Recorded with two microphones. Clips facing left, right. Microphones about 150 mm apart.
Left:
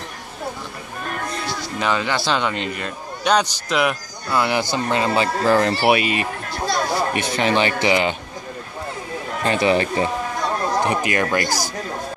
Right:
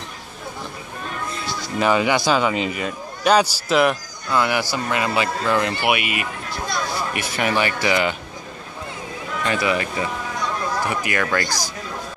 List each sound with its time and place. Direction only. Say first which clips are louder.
1.8 s a man's voice: right 4 dB; 10° right (ahead or behind)
4.3 s speech: left 1 dB; 20° left (ahead or behind)
9.4 s speech: left 4 dB; 30° left (ahead or behind)